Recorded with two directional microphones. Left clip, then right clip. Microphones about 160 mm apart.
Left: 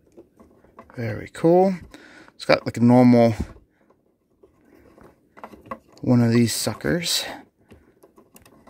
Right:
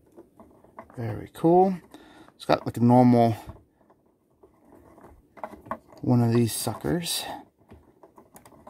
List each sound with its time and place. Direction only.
0.9 s speech: 15° left (ahead or behind)
5.9 s speech: 15° left (ahead or behind)